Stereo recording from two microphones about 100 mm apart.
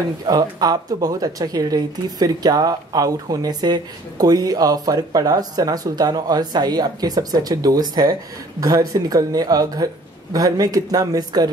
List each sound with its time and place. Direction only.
0.3 s speech: 40° right (ahead or behind)